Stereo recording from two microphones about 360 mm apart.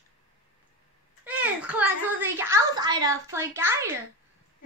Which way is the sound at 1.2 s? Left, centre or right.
Centre.